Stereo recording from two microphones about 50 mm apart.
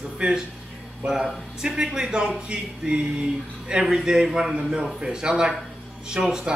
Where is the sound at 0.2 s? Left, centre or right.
Centre.